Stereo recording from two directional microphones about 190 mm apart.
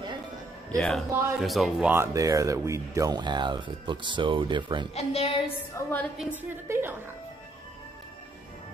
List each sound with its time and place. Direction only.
0.7 s speech: centre (ahead or behind); by 4.8 s 25° right (ahead or behind)
4.9 s a woman's voice: 30° left (ahead or behind)
5.8 s a woman's voice: 10° left (ahead or behind)
6.1 s a woman's voice: 10° right (ahead or behind)